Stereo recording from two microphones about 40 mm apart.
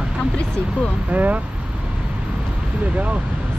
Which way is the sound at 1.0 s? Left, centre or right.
Right.